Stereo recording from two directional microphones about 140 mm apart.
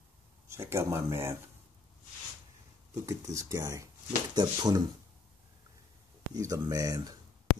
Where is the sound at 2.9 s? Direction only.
20° right (ahead or behind).